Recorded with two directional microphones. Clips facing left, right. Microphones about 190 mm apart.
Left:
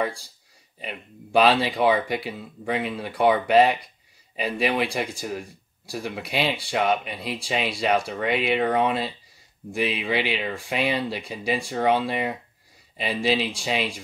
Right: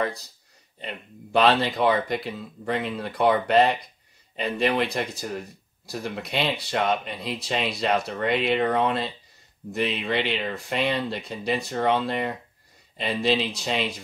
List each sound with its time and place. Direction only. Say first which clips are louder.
0.7 s speech: even; 5° left (ahead or behind)